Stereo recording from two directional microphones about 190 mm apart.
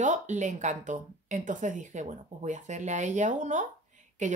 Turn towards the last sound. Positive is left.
turn(degrees=-40)  # may be behind; listen again after turning